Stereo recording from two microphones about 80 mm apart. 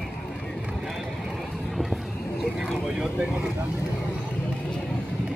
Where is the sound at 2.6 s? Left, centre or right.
Centre.